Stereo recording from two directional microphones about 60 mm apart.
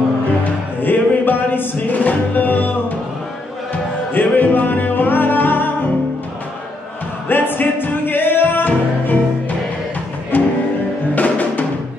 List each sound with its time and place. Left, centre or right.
0.4 s music: left
4.1 s music: left
7.2 s music: left
10.3 s music: left
11.1 s drum: left